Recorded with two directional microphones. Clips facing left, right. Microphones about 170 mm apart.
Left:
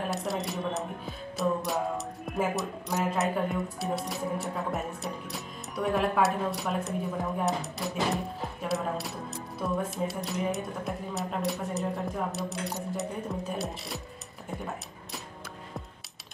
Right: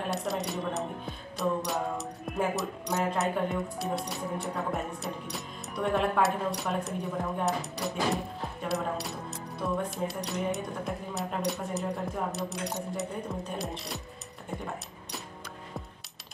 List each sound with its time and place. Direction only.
0.1 s music: centre (ahead or behind)
5.0 s speech: centre (ahead or behind)